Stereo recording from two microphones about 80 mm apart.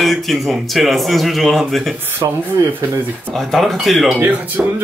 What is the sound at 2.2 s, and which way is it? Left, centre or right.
Speech, right.